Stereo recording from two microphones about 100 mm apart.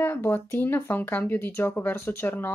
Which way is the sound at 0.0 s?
20° left (ahead or behind).